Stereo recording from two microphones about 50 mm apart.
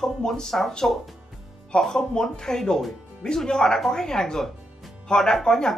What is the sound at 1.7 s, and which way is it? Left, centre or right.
Speech, centre.